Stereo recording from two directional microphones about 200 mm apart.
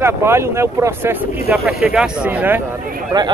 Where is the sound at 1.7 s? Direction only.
5° right (ahead or behind).